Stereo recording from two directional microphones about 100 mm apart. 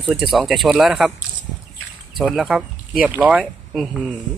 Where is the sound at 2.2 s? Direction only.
Centre (ahead or behind).